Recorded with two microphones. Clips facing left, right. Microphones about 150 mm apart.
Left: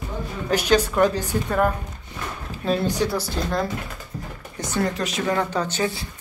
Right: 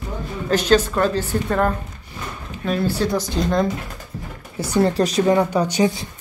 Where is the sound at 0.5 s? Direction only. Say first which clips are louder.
Right 3 dB; 10° left (ahead or behind).